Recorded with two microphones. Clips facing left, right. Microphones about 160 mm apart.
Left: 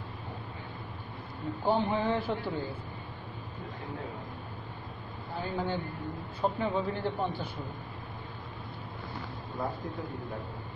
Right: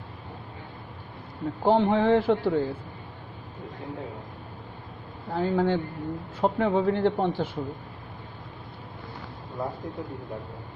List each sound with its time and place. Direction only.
1.6 s a man's voice: 90° right
5.3 s a man's voice: 90° right